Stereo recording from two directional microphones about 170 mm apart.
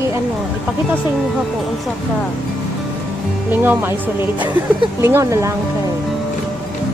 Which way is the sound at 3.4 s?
10° right (ahead or behind).